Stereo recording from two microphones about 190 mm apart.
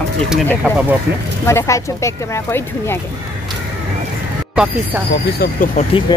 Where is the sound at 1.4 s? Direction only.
15° left (ahead or behind).